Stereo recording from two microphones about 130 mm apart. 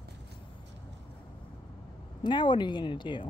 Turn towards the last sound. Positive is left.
turn(degrees=40)  # may be behind; listen again after turning